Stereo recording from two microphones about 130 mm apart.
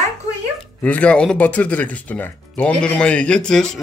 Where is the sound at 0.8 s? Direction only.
10° left (ahead or behind).